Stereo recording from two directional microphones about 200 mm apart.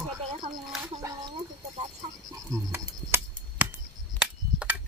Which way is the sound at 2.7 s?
10° right (ahead or behind).